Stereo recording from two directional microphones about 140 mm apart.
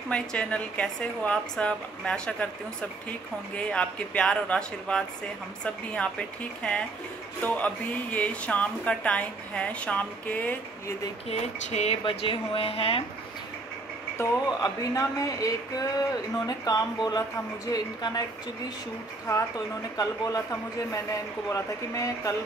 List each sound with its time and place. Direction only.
0.1 s speech: 5° left (ahead or behind)
3.5 s speech: 10° left (ahead or behind)
11.2 s a woman's voice: 50° left (ahead or behind)
12.0 s a woman's voice: 40° left (ahead or behind)
14.1 s speech: 25° left (ahead or behind)
20.0 s speech: 25° left (ahead or behind)
21.5 s speech: 25° left (ahead or behind)